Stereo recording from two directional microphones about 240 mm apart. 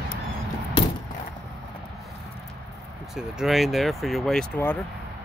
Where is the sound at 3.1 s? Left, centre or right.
Centre.